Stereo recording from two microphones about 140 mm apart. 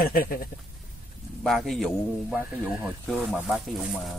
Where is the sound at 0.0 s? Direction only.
90° left.